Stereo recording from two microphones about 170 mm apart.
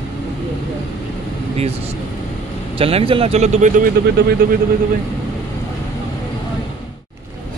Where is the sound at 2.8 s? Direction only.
35° right (ahead or behind); by 4.3 s 50° right (ahead or behind).